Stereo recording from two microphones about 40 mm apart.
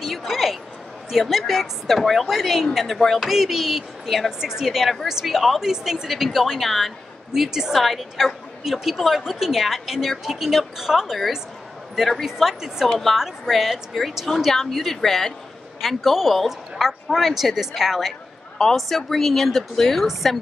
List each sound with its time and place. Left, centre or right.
0.0 s a sound: centre
1.1 s a woman's voice: centre
2.9 s a woman's voice: centre
3.2 s a woman's voice: centre
5.6 s a woman's voice: centre
7.3 s a woman's voice: centre
7.7 s a woman's voice: centre
18.8 s a woman's voice: centre